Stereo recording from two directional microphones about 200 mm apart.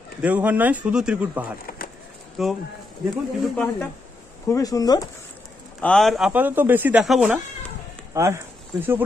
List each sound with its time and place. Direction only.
0.2 s speech: 10° right (ahead or behind)
1.7 s a sound: 45° left (ahead or behind)
2.4 s speech: centre (ahead or behind)
4.5 s speech: 15° left (ahead or behind)
5.8 s speech: 5° left (ahead or behind)
8.1 s speech: 15° right (ahead or behind)